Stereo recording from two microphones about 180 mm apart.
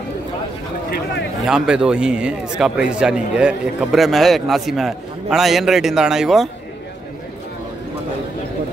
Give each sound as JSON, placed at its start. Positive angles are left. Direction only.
{"t": 0.8, "sound": "speech", "side_deg": 60}
{"t": 1.4, "sound": "speech", "side_deg": -5}